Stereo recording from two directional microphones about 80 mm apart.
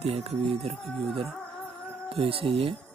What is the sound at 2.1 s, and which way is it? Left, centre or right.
Speech, right.